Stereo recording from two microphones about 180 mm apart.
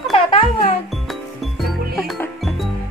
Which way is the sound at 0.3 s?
35° left (ahead or behind).